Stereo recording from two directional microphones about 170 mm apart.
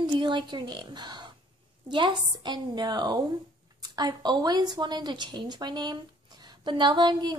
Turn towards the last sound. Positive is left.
turn(degrees=-25)  # may be behind; listen again after turning